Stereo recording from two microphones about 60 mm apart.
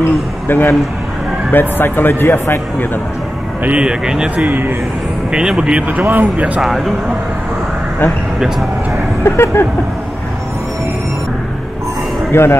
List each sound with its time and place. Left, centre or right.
0.0 s speech: left
3.6 s speech: centre
4.5 s a man's voice: right
5.3 s speech: centre
6.6 s speech: centre
9.2 s vehicle: left
12.3 s speech: left